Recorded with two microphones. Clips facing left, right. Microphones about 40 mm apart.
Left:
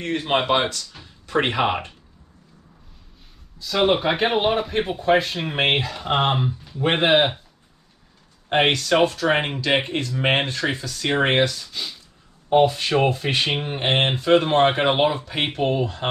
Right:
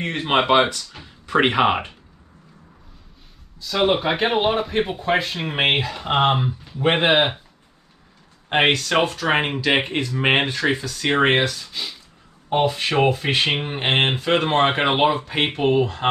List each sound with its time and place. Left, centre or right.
0.0 s speech: right
3.5 s speech: centre
8.5 s speech: centre